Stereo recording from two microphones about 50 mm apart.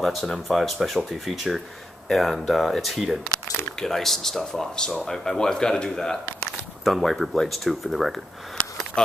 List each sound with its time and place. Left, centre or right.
0.0 s speech: centre
9.0 s speech: centre